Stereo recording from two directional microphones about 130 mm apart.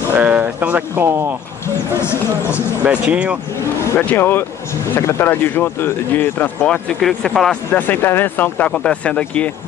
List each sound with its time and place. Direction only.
0.1 s speech: 10° right (ahead or behind)
1.9 s speech: 20° left (ahead or behind)
2.8 s speech: 10° right (ahead or behind)
3.8 s speech: 15° left (ahead or behind)
7.7 s speech: 15° left (ahead or behind)